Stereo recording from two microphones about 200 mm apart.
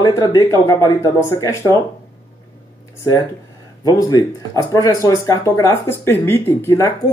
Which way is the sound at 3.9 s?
20° left (ahead or behind).